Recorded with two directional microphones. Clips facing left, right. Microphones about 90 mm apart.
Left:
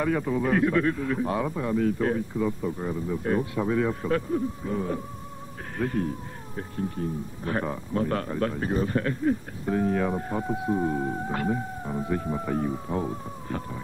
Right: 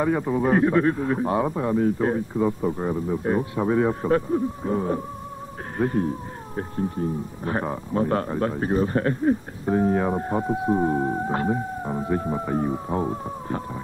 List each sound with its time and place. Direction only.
0.0 s speech: 25° right (ahead or behind)